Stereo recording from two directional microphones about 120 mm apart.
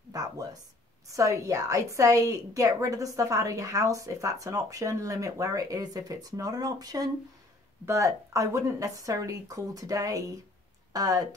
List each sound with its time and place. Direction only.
0.1 s a woman's voice: 30° right (ahead or behind)